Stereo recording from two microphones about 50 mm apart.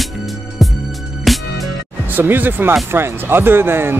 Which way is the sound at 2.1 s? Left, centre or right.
Right.